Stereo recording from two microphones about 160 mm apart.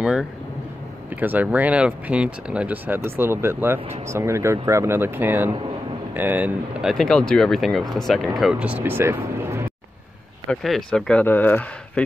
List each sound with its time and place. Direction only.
0.0 s speech: 5° right (ahead or behind)
10.5 s speech: 5° left (ahead or behind)